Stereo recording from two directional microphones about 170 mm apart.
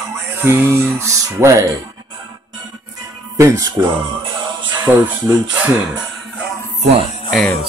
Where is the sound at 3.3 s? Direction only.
20° right (ahead or behind).